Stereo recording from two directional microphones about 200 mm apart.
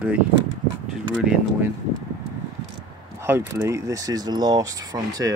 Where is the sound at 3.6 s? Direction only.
15° right (ahead or behind).